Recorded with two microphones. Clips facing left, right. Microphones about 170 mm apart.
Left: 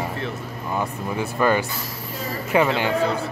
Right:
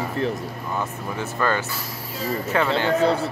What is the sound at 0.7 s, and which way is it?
Speech, 15° left (ahead or behind).